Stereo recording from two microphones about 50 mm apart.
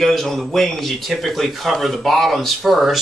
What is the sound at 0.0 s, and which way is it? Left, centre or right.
A man's voice, centre.